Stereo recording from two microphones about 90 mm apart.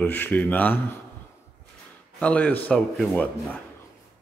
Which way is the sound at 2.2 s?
15° left (ahead or behind).